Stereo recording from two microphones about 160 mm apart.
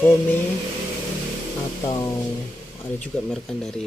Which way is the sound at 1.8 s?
20° left (ahead or behind).